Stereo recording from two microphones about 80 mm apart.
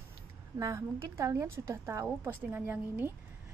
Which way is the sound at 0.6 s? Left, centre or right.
Right.